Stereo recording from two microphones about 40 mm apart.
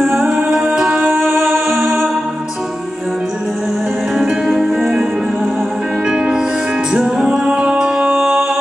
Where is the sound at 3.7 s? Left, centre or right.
Centre.